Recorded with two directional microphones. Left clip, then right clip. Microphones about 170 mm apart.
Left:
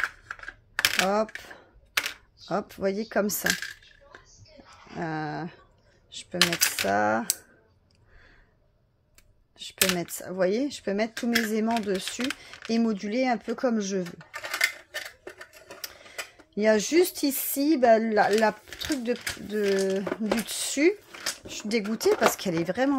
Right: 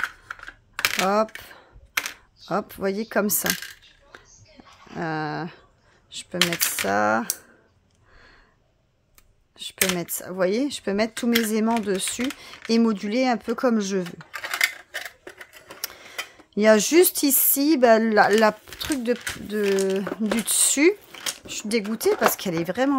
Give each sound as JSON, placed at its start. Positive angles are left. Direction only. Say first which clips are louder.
{"t": 0.3, "sound": "computer keyboard", "louder": "right 2 dB", "side_deg": -30}
{"t": 1.0, "sound": "speech", "louder": "right 4 dB", "side_deg": -10}
{"t": 1.4, "sound": "camera", "louder": "right 1 dB", "side_deg": -10}
{"t": 4.1, "sound": "a sound", "louder": "right 4 dB", "side_deg": -10}
{"t": 4.9, "sound": "speech", "louder": "right 4 dB", "side_deg": -15}
{"t": 9.6, "sound": "speech", "louder": "right 1 dB", "side_deg": -10}
{"t": 11.5, "sound": "speech", "louder": "right 3 dB", "side_deg": -15}
{"t": 19.6, "sound": "speech", "louder": "right 3 dB", "side_deg": -30}
{"t": 21.9, "sound": "speech", "louder": "right 1 dB", "side_deg": -5}